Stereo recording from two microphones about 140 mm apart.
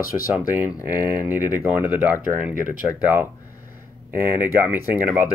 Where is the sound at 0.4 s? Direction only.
25° left (ahead or behind).